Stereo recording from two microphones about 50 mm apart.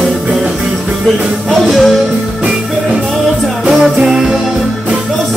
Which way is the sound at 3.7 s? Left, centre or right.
Centre.